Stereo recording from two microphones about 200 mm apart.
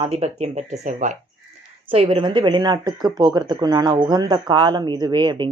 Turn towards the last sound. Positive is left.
turn(degrees=-20)  # may be behind; listen again after turning